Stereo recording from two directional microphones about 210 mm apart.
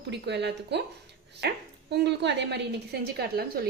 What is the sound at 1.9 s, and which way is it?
A woman's voice, 55° right (ahead or behind).